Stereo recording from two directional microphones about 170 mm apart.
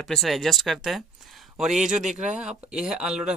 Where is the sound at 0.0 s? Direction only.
Centre (ahead or behind).